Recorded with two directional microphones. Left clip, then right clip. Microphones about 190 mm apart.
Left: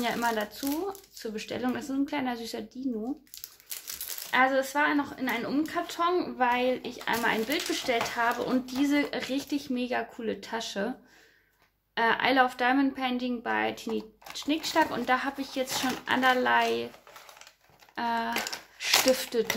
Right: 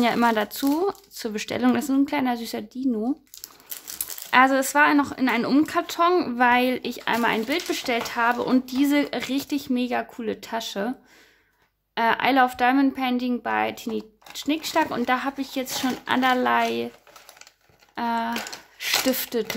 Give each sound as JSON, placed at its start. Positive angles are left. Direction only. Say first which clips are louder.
{"t": 0.0, "sound": "a woman's voice", "louder": "right 8 dB", "side_deg": -45}
{"t": 4.3, "sound": "a woman's voice", "louder": "right 6 dB", "side_deg": -45}
{"t": 17.9, "sound": "a woman's voice", "louder": "right 3 dB", "side_deg": -30}